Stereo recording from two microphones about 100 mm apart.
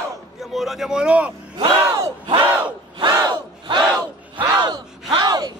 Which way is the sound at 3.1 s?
45° right (ahead or behind).